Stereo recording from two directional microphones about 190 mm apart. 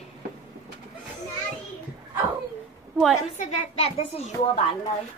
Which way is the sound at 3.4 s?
30° left (ahead or behind).